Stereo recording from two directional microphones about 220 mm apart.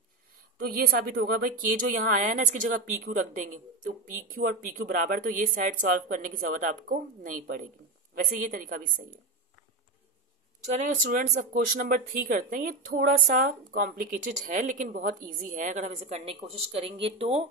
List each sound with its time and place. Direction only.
0.3 s speech: 40° right (ahead or behind)
10.8 s a woman's voice: 35° right (ahead or behind)